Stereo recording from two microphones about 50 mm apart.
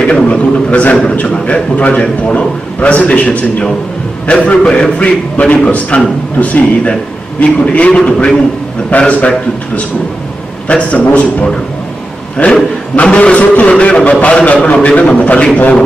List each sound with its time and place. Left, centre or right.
0.0 s a sound: left
1.2 s a man's voice: left
13.0 s a man's voice: left